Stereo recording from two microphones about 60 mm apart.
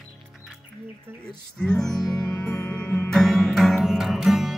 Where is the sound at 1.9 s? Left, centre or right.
Left.